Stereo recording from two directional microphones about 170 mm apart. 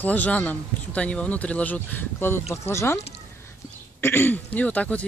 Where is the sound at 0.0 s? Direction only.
10° left (ahead or behind).